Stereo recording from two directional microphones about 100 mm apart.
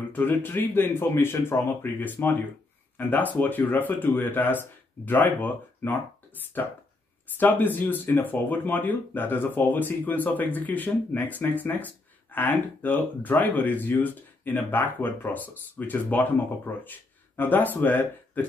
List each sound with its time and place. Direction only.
0.1 s speech: 20° left (ahead or behind)
7.3 s speech: 20° left (ahead or behind)